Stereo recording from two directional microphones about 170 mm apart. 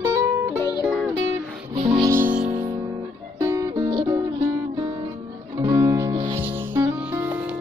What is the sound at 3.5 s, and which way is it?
Music, 20° right (ahead or behind).